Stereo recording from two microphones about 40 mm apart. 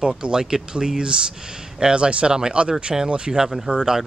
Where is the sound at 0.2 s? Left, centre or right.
Centre.